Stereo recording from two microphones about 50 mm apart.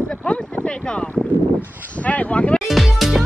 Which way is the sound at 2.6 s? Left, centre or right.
Centre.